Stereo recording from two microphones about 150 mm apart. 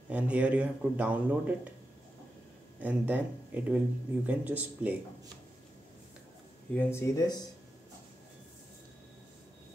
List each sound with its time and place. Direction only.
0.1 s speech: 10° right (ahead or behind)
2.8 s speech: 10° right (ahead or behind)
6.7 s speech: 15° left (ahead or behind)